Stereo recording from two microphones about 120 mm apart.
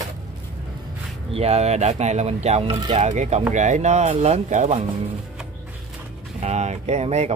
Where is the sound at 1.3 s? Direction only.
60° right (ahead or behind).